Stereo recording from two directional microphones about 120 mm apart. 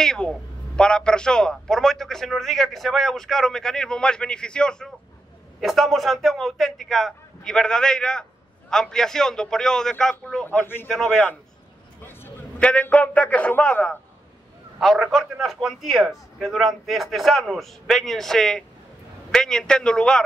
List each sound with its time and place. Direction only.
0.0 s a man's voice: 5° left (ahead or behind)
10.4 s a man's voice: 15° left (ahead or behind)
10.9 s a man's voice: 5° left (ahead or behind)
12.0 s a man's voice: 20° left (ahead or behind)